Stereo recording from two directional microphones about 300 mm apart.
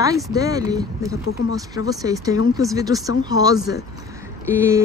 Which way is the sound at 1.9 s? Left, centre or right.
Centre.